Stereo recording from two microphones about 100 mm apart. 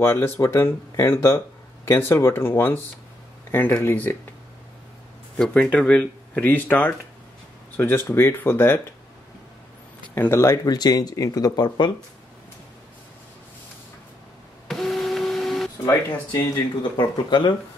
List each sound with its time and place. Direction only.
0.0 s speech: 25° left (ahead or behind)
5.4 s speech: 10° left (ahead or behind)
10.1 s speech: 25° left (ahead or behind); by 11.9 s 45° left (ahead or behind)
14.7 s printer: 5° left (ahead or behind)
15.8 s speech: 40° left (ahead or behind)